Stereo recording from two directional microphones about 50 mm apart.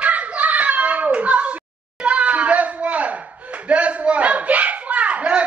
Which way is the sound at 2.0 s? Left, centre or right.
Right.